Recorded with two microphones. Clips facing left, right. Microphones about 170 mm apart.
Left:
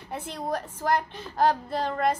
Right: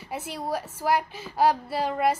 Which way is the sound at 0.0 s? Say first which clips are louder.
Right 1 dB; 5° right (ahead or behind).